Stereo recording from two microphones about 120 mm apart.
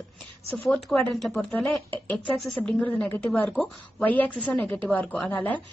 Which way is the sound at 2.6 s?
10° left (ahead or behind).